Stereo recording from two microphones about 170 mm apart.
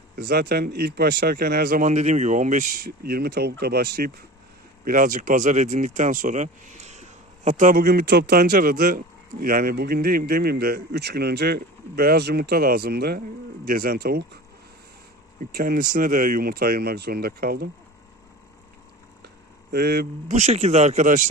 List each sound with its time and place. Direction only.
0.1 s speech: 70° right (ahead or behind)
4.8 s speech: 50° right (ahead or behind)
15.5 s speech: 55° right (ahead or behind)
19.2 s a sound: 70° right (ahead or behind)
20.2 s speech: 40° right (ahead or behind)